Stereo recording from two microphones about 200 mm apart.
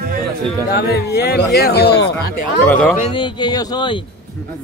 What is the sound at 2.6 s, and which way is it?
Speech, 5° left (ahead or behind).